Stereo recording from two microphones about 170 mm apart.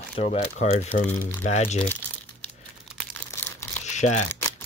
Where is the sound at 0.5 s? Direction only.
45° left (ahead or behind).